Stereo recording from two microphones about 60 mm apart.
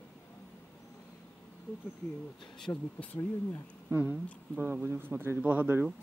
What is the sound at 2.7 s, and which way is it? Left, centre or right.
Speech, left.